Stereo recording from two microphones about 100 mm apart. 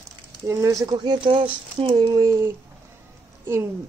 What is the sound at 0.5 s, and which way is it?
Speech, 30° right (ahead or behind).